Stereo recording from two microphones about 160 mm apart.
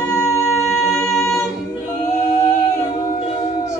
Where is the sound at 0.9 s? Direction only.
5° left (ahead or behind).